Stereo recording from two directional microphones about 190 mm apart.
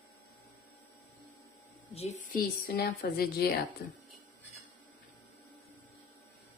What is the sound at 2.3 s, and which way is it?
A woman's voice, 55° left (ahead or behind).